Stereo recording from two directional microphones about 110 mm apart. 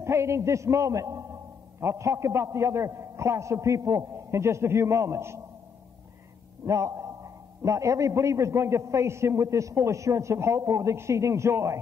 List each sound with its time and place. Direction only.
0.0 s a man's voice: 25° right (ahead or behind)
6.6 s a man's voice: 30° right (ahead or behind)